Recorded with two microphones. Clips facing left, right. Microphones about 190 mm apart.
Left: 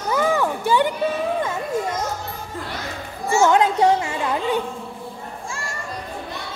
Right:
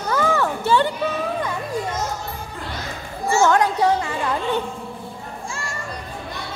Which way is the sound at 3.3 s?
15° left (ahead or behind).